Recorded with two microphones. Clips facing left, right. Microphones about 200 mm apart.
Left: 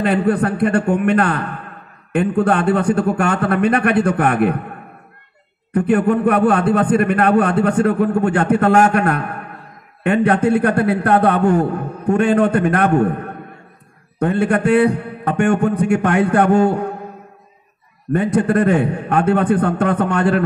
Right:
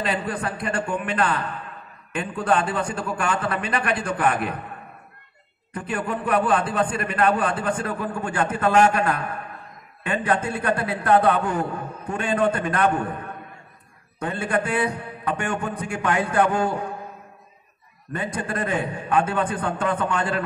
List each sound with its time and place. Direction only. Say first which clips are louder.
0.0 s a man's voice: left 10 dB; 60° left (ahead or behind)
5.9 s a man's voice: left 10 dB; 60° left (ahead or behind)
18.1 s a man's voice: left 12 dB; 65° left (ahead or behind)